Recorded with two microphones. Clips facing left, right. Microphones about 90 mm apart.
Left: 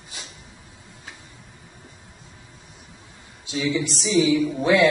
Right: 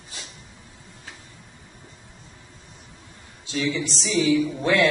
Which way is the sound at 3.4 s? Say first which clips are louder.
Left 2 dB; 15° left (ahead or behind).